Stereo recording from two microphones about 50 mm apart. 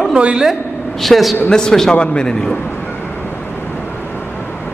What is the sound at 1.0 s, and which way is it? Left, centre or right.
Speech, centre.